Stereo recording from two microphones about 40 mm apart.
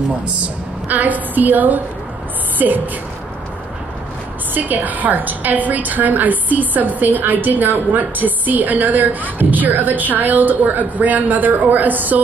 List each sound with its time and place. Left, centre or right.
0.8 s a woman's voice: right
4.6 s a woman's voice: right